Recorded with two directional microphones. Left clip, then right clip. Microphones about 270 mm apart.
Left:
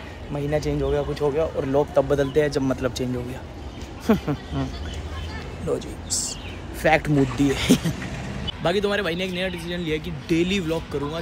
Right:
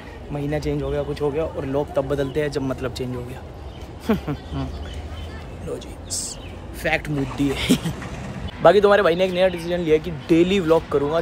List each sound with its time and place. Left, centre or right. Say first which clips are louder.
0.4 s speech: left 1 dB; centre
4.1 s speech: left 2 dB; centre
5.7 s speech: left 4 dB; centre
7.5 s speech: right 1 dB; centre
8.6 s speech: right 9 dB; centre